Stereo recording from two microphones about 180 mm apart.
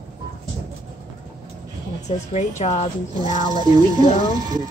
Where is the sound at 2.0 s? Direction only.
40° left (ahead or behind).